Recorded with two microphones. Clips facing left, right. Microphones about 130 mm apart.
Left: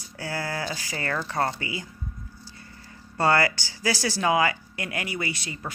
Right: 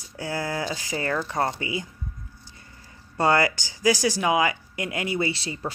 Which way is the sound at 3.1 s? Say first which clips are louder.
Right 1 dB; 20° right (ahead or behind).